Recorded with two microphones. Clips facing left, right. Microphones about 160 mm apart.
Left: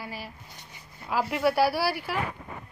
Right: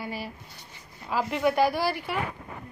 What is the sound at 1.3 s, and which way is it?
Speech, 5° left (ahead or behind).